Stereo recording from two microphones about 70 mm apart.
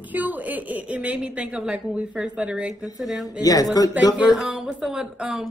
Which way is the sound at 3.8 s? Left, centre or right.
Left.